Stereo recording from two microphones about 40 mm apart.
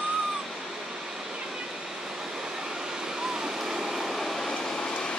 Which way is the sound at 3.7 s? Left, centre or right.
Centre.